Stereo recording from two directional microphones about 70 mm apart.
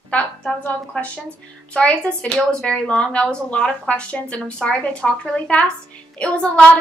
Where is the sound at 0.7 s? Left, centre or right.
Centre.